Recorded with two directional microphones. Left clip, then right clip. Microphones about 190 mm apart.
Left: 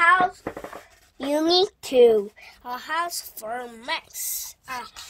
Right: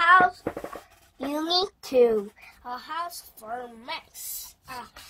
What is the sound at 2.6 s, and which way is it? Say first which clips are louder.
Speech: left 5 dB; 50° left (ahead or behind).